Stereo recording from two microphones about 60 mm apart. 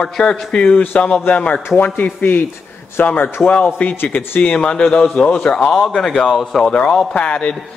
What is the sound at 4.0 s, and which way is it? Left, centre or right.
Speech, left.